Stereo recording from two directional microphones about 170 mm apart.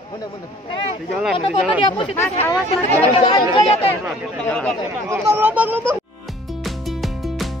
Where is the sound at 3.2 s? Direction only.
30° left (ahead or behind).